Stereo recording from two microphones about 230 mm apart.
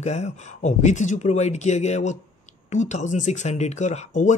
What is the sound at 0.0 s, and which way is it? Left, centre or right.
Speech, left.